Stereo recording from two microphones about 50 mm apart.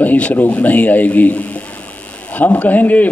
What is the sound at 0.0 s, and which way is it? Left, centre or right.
A man's voice, left.